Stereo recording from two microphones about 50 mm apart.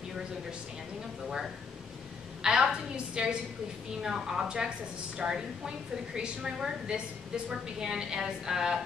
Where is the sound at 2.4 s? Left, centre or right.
Centre.